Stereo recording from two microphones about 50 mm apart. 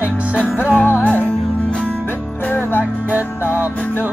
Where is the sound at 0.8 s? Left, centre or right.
Left.